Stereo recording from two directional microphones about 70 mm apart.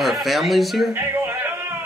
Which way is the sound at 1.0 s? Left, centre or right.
Right.